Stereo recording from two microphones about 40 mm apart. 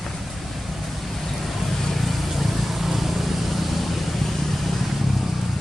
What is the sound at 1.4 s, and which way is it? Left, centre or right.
Vehicle, centre.